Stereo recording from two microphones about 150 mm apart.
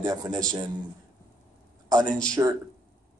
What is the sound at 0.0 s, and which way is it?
Speech, 25° right (ahead or behind).